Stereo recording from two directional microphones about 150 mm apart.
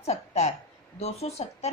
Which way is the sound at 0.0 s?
45° left (ahead or behind).